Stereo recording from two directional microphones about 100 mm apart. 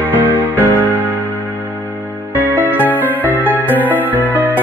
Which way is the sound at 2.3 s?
20° right (ahead or behind).